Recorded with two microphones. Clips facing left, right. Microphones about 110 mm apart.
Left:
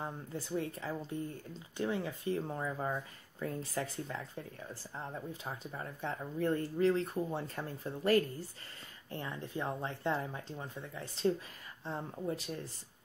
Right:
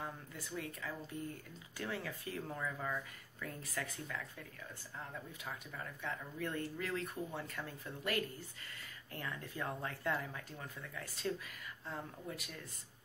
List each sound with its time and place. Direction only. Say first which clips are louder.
0.0 s speech: left 5 dB; 30° left (ahead or behind)
9.1 s speech: left 5 dB; 25° left (ahead or behind)